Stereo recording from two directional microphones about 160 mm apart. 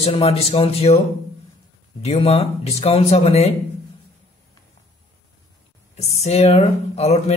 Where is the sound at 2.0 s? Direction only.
40° left (ahead or behind).